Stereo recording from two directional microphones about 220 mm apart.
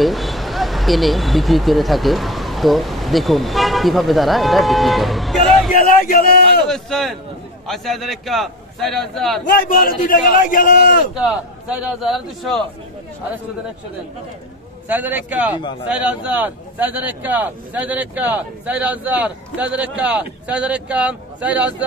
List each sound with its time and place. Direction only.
0.0 s speech: centre (ahead or behind)
5.7 s a sound: 40° left (ahead or behind)
6.7 s a man's voice: centre (ahead or behind)
9.4 s a man's voice: 40° left (ahead or behind)
11.2 s a man's voice: 5° right (ahead or behind)
14.9 s a man's voice: 10° right (ahead or behind)